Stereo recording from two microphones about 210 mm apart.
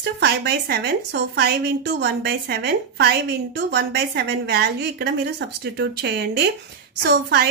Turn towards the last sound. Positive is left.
turn(degrees=-50)  # may be behind; listen again after turning